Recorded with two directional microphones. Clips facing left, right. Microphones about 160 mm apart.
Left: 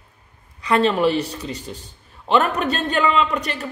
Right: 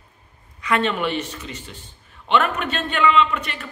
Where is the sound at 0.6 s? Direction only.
35° left (ahead or behind).